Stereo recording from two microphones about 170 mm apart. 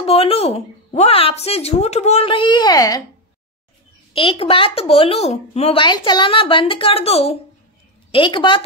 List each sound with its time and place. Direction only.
0.0 s speech: 35° left (ahead or behind)
4.1 s a woman's voice: 30° left (ahead or behind)